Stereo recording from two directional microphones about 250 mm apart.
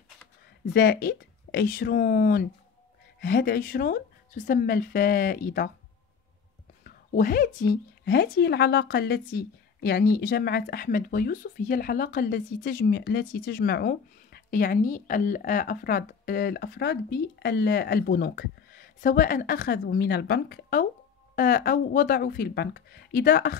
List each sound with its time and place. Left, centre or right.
0.7 s speech: left
6.8 s speech: left